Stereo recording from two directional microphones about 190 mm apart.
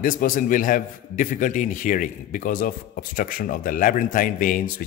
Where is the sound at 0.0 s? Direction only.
45° left (ahead or behind).